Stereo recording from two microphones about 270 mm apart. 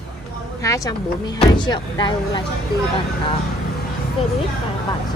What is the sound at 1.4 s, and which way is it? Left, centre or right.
Speech, centre.